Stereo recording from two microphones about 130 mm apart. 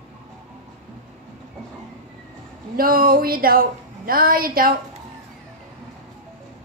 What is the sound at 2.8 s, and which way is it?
A woman's voice, 90° right.